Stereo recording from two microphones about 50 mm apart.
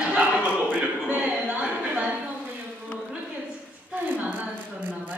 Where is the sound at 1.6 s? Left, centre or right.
Centre.